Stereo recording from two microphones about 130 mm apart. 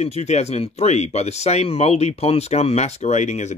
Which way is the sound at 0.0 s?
60° left (ahead or behind).